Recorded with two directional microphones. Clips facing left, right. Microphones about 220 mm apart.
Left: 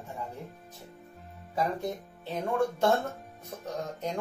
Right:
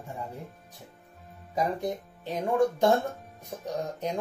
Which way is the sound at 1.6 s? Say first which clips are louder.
Right 2 dB; 15° right (ahead or behind).